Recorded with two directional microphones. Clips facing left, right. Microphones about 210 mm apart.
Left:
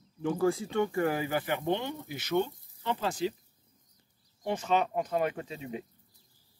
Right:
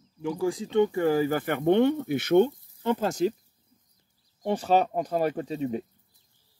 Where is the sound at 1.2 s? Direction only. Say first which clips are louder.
Right 6 dB; 45° right (ahead or behind).